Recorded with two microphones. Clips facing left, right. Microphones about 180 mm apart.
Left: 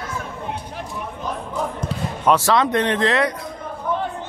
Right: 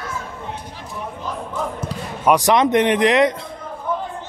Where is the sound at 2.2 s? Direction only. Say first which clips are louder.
Right 2 dB; 15° right (ahead or behind).